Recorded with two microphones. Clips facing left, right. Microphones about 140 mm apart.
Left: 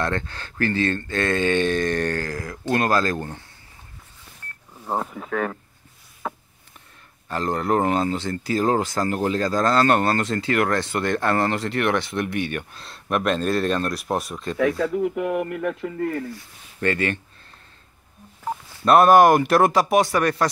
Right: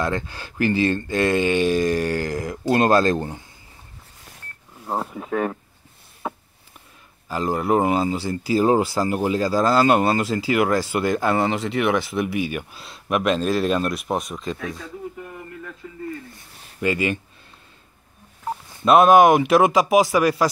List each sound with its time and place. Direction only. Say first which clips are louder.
0.0 s speech: right 1 dB; 10° right (ahead or behind)
5.2 s speech: right 2 dB; 15° right (ahead or behind)
7.2 s speech: right 1 dB; 5° right (ahead or behind)
14.6 s speech: left 11 dB; 75° left (ahead or behind)
16.8 s speech: right 1 dB; 10° right (ahead or behind)
18.9 s speech: right 1 dB; centre (ahead or behind)